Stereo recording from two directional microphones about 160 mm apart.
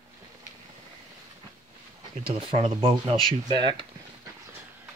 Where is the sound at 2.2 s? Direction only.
35° right (ahead or behind).